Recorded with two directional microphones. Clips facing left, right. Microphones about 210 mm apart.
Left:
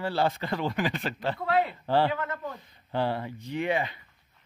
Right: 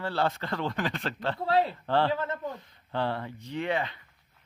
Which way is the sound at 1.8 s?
10° left (ahead or behind).